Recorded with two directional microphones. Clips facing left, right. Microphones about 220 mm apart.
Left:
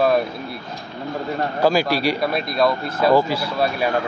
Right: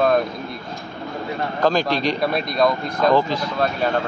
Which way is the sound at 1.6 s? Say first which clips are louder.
Left 1 dB; 10° left (ahead or behind).